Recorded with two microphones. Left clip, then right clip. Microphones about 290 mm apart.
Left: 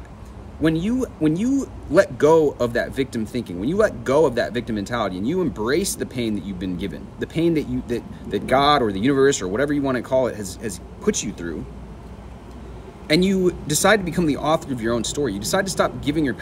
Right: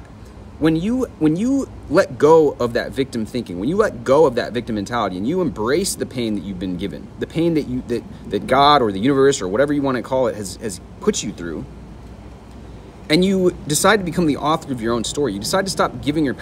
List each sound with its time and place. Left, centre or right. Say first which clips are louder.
0.6 s speech: right 3 dB; centre
13.0 s speech: right 2 dB; centre